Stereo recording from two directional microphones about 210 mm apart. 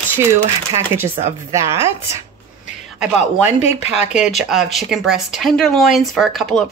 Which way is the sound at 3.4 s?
30° left (ahead or behind).